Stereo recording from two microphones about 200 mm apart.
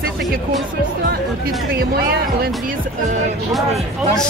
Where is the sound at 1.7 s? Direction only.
50° right (ahead or behind).